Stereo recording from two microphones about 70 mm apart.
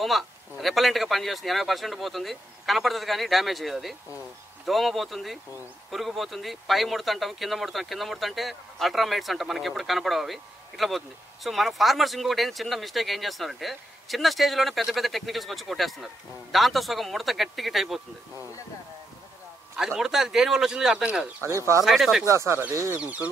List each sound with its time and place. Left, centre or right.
0.0 s speech: centre
20.0 s speech: centre
21.5 s speech: right
21.8 s speech: centre
22.2 s speech: right
22.9 s speech: right